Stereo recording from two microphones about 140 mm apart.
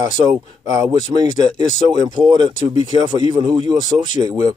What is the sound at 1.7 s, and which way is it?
Speech, 30° right (ahead or behind).